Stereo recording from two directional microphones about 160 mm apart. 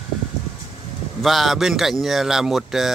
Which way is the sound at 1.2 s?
Centre (ahead or behind).